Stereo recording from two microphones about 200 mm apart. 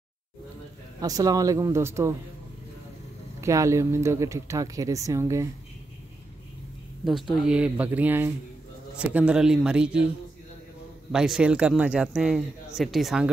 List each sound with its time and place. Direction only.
1.0 s speech: 20° right (ahead or behind)
3.3 s speech: 15° right (ahead or behind)
7.1 s speech: centre (ahead or behind)
11.1 s speech: centre (ahead or behind)